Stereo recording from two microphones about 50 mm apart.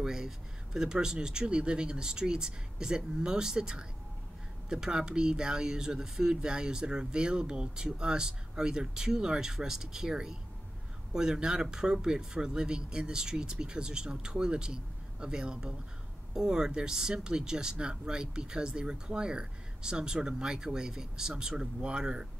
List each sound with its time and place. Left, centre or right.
0.0 s speech: centre